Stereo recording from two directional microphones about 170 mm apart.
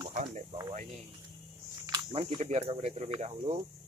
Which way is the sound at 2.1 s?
35° right (ahead or behind).